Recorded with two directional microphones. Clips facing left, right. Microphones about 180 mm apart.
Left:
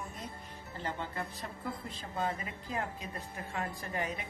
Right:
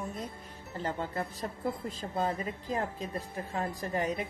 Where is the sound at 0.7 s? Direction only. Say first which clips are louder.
Right 4 dB; 40° right (ahead or behind).